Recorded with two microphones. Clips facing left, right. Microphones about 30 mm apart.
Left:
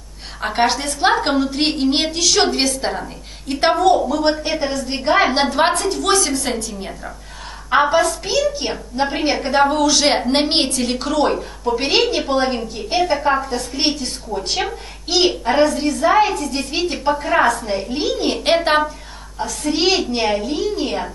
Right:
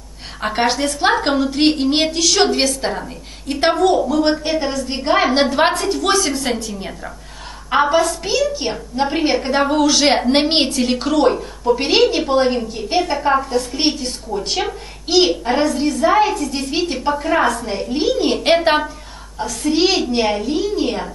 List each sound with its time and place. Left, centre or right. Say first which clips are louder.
0.4 s a woman's voice: even; centre